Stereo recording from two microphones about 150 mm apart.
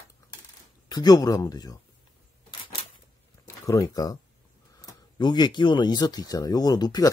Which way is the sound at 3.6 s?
25° left (ahead or behind).